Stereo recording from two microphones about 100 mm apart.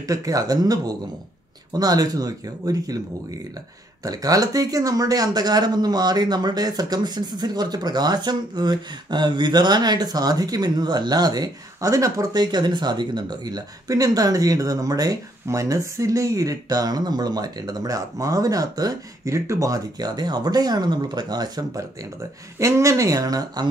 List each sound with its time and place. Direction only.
0.0 s speech: 35° right (ahead or behind)
4.0 s speech: 35° right (ahead or behind)
22.6 s speech: 30° right (ahead or behind)